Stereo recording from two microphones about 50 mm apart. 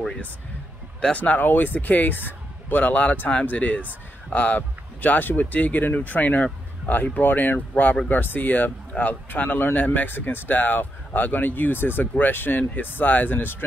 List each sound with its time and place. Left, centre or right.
1.1 s speech: left